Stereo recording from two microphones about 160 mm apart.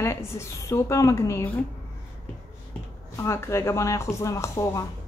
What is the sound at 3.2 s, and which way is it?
A woman's voice, 15° left (ahead or behind).